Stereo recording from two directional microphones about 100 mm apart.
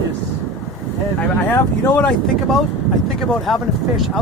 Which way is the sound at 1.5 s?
15° left (ahead or behind).